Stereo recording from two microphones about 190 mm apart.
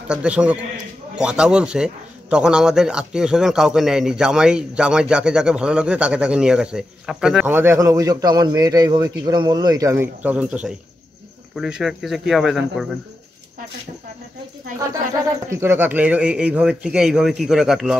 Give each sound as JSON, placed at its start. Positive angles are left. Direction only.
{"t": 0.1, "sound": "a man's voice", "side_deg": -5}
{"t": 15.5, "sound": "a man's voice", "side_deg": -15}